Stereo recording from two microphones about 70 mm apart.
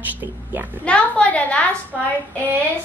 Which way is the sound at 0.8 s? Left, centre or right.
Centre.